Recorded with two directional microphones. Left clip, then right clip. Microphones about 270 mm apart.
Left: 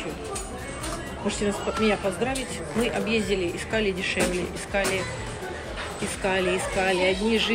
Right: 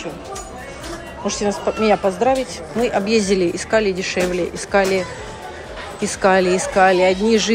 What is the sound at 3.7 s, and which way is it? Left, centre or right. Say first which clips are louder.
Speech: right 8 dB; centre.